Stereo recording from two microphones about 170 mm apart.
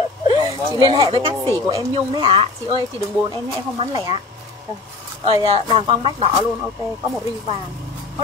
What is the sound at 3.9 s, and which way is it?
Speech, 20° right (ahead or behind).